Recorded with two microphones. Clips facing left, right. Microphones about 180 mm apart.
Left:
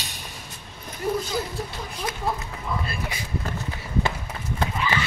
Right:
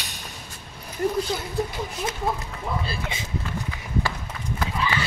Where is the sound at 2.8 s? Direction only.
25° right (ahead or behind).